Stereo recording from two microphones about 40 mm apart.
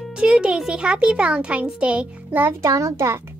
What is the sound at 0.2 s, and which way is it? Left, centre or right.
Speech, right.